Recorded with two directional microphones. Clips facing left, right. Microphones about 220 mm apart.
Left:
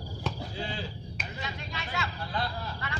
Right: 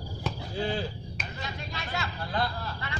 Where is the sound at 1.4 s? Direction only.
40° right (ahead or behind).